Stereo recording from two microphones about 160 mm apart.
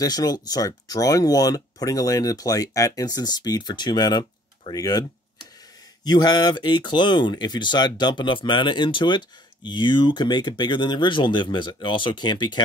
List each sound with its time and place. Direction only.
0.0 s speech: 25° left (ahead or behind)
6.0 s speech: 25° left (ahead or behind)